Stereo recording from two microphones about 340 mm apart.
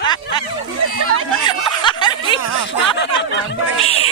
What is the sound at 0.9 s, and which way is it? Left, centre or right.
Speech, right.